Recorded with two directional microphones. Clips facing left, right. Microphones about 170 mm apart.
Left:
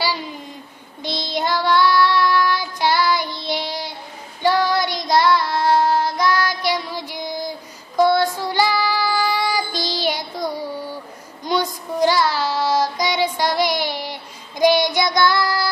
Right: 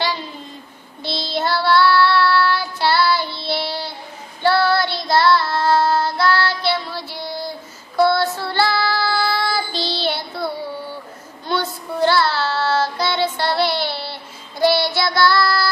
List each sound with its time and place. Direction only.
1.0 s child singing: 15° left (ahead or behind)